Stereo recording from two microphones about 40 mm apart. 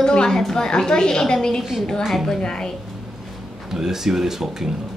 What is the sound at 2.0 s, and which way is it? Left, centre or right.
Speech, centre.